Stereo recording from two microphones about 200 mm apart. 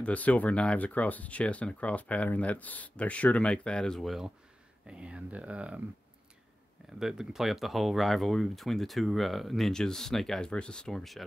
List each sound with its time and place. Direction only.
0.0 s speech: 5° left (ahead or behind)
7.0 s speech: centre (ahead or behind)